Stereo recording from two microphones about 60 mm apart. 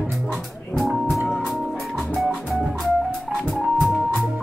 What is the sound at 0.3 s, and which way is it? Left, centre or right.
Music, centre.